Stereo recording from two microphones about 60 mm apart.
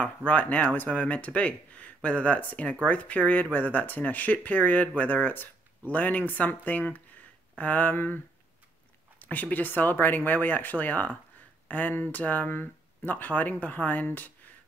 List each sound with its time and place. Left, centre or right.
0.0 s speech: left
9.2 s speech: left